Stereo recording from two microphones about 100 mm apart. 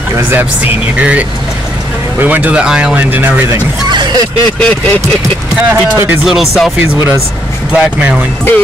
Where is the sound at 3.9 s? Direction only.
45° right (ahead or behind).